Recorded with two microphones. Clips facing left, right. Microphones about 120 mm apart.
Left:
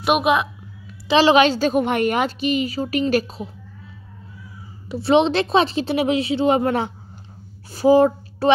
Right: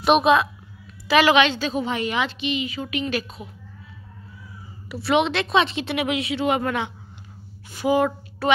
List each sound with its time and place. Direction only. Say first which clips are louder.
0.0 s a woman's voice: right 1 dB; 10° left (ahead or behind)
1.0 s a woman's voice: left 2 dB; 30° left (ahead or behind)
1.3 s a woman's voice: left 4 dB; 40° left (ahead or behind)
5.0 s speech: left 4 dB; 30° left (ahead or behind)